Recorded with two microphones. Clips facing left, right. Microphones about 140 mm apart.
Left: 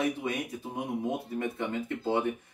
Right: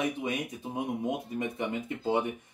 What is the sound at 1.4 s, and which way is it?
Speech, 15° right (ahead or behind).